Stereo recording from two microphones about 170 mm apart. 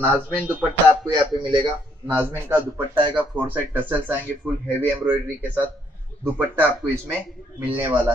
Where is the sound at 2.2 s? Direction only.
10° right (ahead or behind).